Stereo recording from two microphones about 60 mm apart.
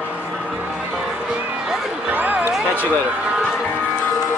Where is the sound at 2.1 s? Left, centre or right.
Right.